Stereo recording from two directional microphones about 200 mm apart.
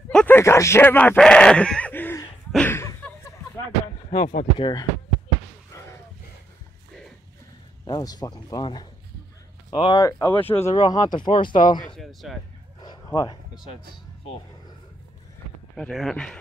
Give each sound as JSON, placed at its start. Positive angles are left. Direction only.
{"t": 0.1, "sound": "a sound", "side_deg": 10}
{"t": 4.1, "sound": "speech", "side_deg": 45}
{"t": 4.6, "sound": "speech", "side_deg": 20}
{"t": 7.8, "sound": "speech", "side_deg": 20}
{"t": 11.9, "sound": "speech", "side_deg": 0}
{"t": 12.8, "sound": "a sound", "side_deg": 20}
{"t": 15.7, "sound": "speech", "side_deg": 0}